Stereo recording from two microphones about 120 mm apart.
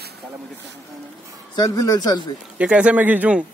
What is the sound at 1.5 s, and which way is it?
Speech, 30° left (ahead or behind).